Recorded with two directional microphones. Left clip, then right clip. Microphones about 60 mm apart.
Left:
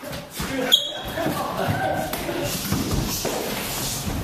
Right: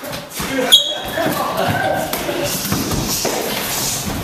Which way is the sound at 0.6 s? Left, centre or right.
Centre.